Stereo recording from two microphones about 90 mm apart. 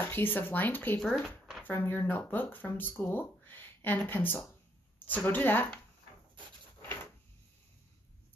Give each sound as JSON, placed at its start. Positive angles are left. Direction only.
{"t": 0.0, "sound": "speech", "side_deg": 25}
{"t": 0.9, "sound": "speech", "side_deg": 5}
{"t": 1.6, "sound": "speech", "side_deg": 25}